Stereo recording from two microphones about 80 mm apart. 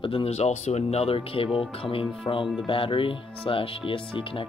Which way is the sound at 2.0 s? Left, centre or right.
Left.